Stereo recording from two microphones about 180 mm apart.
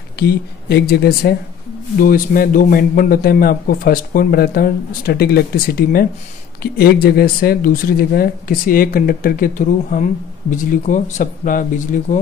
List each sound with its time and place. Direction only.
0.2 s a man's voice: 60° left (ahead or behind); by 12.2 s 45° left (ahead or behind)